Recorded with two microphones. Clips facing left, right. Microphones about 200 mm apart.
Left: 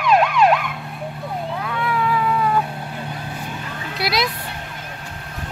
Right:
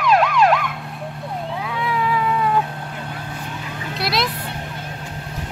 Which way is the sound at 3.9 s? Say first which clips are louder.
Left 1 dB; centre (ahead or behind).